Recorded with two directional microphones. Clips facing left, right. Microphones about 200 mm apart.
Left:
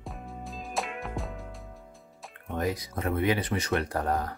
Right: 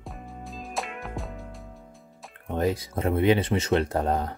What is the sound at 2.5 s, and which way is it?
Speech, 25° right (ahead or behind).